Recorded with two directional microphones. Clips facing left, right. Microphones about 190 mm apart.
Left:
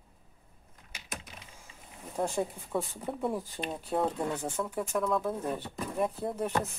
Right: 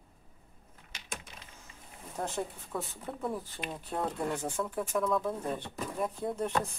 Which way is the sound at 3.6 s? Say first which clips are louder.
Left 4 dB; 20° left (ahead or behind).